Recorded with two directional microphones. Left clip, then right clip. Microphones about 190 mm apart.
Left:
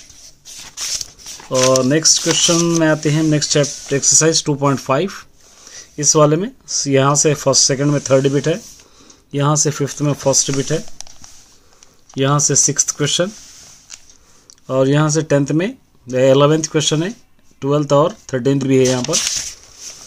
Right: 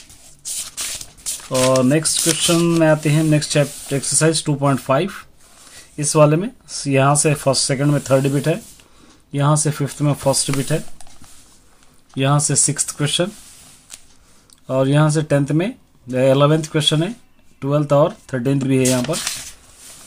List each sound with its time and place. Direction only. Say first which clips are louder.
1.6 s speech: left 2 dB; 25° left (ahead or behind)
12.2 s speech: left 4 dB; 25° left (ahead or behind)
14.7 s speech: left 2 dB; 25° left (ahead or behind)